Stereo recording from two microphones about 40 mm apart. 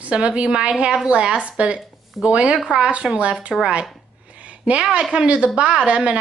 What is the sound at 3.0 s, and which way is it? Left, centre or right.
Speech, centre.